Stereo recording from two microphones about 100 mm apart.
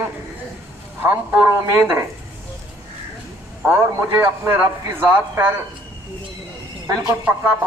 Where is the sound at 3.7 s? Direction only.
25° right (ahead or behind).